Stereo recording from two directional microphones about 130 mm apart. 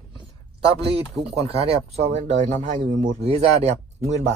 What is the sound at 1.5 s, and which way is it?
Speech, 50° right (ahead or behind).